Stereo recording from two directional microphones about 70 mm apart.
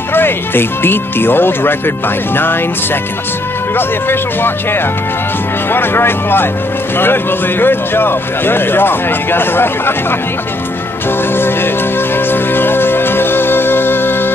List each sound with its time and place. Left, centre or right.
0.1 s a man's voice: left
11.1 s music: left